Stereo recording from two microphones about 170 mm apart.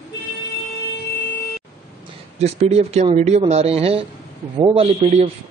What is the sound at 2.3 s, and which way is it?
A man's voice, 40° right (ahead or behind).